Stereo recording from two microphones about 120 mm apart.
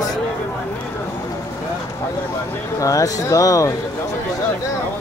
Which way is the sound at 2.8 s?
30° left (ahead or behind).